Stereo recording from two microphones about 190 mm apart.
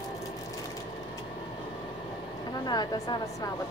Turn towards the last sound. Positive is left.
turn(degrees=20)  # may be behind; listen again after turning